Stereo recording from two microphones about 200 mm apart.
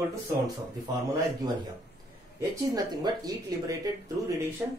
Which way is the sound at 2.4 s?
20° right (ahead or behind).